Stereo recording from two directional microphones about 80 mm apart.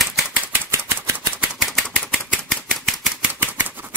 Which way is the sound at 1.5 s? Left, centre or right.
Centre.